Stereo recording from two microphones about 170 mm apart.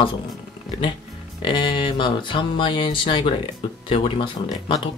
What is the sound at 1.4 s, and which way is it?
Speech, 30° left (ahead or behind).